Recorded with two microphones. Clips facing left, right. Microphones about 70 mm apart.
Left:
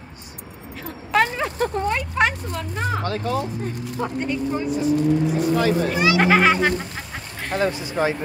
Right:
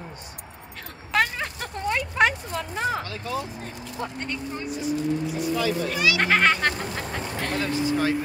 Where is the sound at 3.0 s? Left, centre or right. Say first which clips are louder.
Left 9 dB; left.